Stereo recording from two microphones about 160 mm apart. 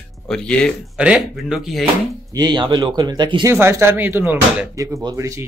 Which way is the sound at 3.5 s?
15° right (ahead or behind).